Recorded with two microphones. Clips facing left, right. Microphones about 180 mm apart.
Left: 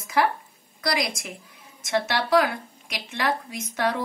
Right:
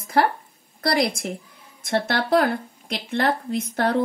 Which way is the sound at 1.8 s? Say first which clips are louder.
Right 2 dB; 55° right (ahead or behind).